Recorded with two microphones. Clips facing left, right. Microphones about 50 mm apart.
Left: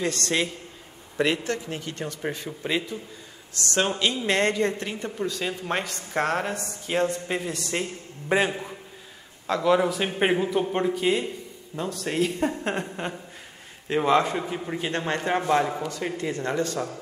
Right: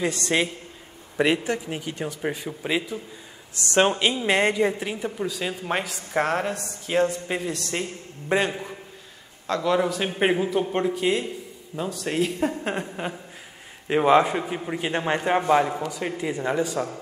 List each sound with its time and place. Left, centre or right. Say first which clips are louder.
0.0 s a man's voice: right 2 dB; centre
3.5 s a man's voice: right 5 dB; right; by 13.2 s centre
13.8 s a man's voice: right 3 dB; centre